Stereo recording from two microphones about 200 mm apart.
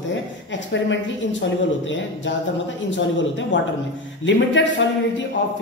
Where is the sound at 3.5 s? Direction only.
70° left (ahead or behind).